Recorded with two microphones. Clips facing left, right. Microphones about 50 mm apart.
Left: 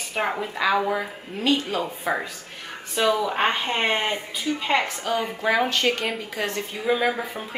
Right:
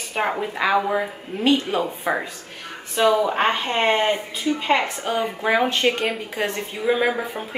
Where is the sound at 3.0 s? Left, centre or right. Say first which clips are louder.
Right 3 dB; centre.